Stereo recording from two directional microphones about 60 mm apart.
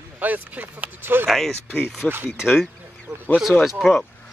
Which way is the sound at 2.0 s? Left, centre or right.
Right.